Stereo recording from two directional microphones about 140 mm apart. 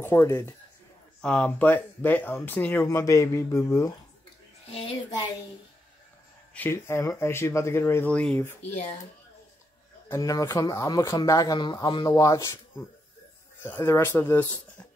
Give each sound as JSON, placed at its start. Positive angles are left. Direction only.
{"t": 0.0, "sound": "speech", "side_deg": 20}
{"t": 1.2, "sound": "speech", "side_deg": 5}
{"t": 4.6, "sound": "speech", "side_deg": 40}
{"t": 6.5, "sound": "speech", "side_deg": 15}
{"t": 10.0, "sound": "speech", "side_deg": 25}
{"t": 13.6, "sound": "speech", "side_deg": 15}